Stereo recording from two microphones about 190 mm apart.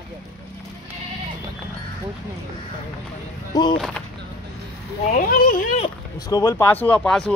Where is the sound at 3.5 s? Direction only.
25° left (ahead or behind).